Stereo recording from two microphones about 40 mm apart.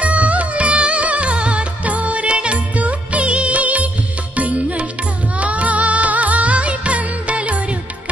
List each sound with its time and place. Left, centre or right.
0.0 s music: right